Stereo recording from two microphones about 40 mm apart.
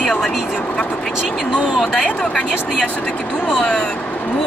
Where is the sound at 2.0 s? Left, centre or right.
Left.